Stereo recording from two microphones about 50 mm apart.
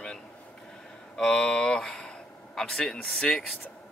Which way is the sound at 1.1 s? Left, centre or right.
Centre.